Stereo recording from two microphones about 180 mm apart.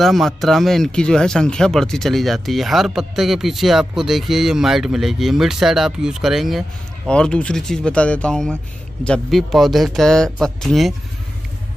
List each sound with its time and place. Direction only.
0.0 s speech: centre (ahead or behind)